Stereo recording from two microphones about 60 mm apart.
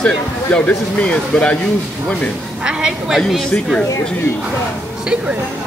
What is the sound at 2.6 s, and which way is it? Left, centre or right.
Speech, centre.